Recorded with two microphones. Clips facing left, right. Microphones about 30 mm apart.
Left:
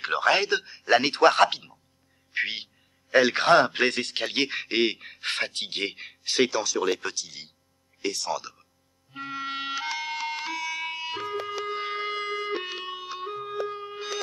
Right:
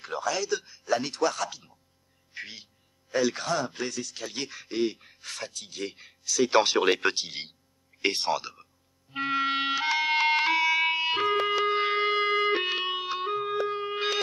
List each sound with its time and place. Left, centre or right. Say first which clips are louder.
0.0 s a man's voice: left 7 dB; left
6.5 s speech: right 4 dB; right
9.1 s music: right 7 dB; right
9.5 s music: right 4 dB; centre; by 11.5 s right
11.6 s music: right 6 dB; right